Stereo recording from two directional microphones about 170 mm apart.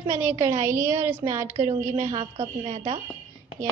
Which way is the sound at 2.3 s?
35° right (ahead or behind).